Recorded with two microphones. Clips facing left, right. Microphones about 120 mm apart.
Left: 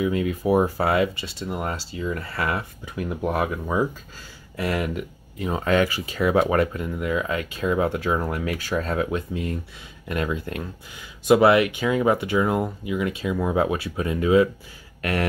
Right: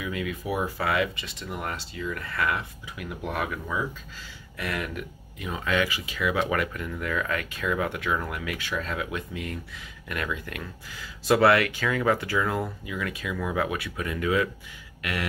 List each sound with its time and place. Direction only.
0.0 s speech: 30° left (ahead or behind)
5.5 s speech: 40° left (ahead or behind)
15.0 s a sound: 40° left (ahead or behind)